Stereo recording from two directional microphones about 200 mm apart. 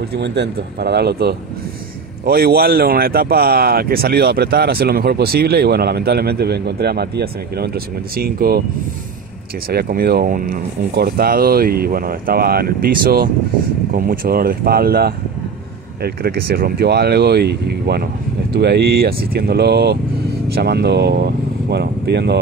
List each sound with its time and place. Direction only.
0.1 s speech: 55° right (ahead or behind)
9.7 s speech: 50° right (ahead or behind)